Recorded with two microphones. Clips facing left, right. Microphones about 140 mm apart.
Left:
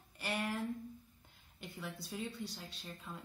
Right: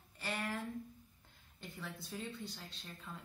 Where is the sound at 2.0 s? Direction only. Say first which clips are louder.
Left 2 dB; 10° left (ahead or behind).